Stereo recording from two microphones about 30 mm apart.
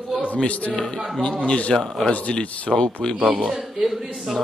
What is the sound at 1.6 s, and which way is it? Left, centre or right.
Speech, left.